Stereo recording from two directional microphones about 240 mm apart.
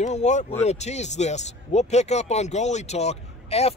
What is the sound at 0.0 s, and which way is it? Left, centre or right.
Speech, left.